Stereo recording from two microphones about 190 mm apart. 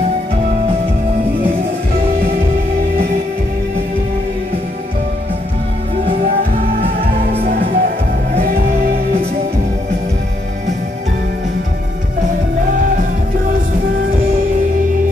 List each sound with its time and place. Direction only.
7.4 s music: 50° right (ahead or behind)